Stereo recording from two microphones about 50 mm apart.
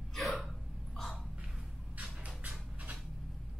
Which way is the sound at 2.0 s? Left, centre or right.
Right.